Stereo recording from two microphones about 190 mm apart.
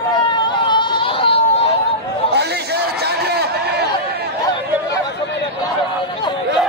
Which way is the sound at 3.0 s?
60° right (ahead or behind).